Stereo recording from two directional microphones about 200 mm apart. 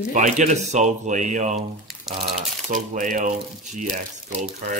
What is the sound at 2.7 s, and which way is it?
Speech, 40° right (ahead or behind).